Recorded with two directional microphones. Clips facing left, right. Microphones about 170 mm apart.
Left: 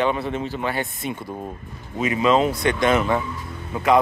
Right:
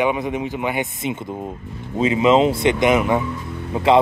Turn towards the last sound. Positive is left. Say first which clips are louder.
# right 3 dB
turn(degrees=-25)  # may be behind; listen again after turning